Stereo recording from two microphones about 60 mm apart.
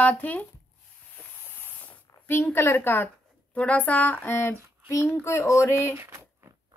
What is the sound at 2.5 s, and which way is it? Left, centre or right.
Speech, left.